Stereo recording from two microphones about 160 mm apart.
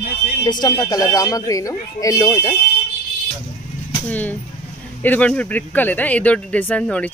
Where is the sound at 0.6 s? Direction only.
25° left (ahead or behind).